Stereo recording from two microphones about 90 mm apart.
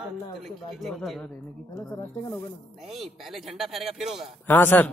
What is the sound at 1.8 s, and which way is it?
Speech, 25° left (ahead or behind).